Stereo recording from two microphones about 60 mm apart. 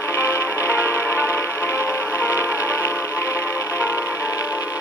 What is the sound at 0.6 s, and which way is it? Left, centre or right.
Music, left.